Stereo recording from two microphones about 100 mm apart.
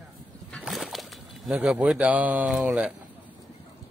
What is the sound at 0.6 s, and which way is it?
Splash, centre (ahead or behind).